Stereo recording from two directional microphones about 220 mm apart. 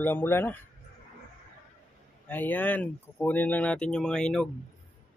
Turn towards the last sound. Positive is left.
turn(degrees=5)  # may be behind; listen again after turning